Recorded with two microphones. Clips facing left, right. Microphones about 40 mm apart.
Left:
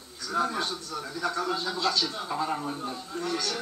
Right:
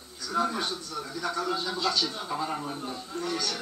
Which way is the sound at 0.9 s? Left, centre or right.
Centre.